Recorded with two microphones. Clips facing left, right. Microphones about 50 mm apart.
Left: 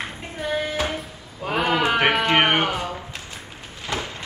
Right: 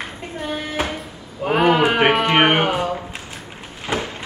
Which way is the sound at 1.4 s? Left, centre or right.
Right.